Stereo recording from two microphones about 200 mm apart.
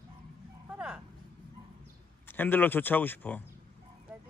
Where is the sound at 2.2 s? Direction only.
10° left (ahead or behind).